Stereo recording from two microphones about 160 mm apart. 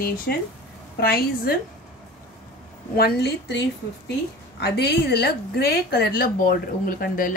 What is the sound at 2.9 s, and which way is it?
Speech, 80° left.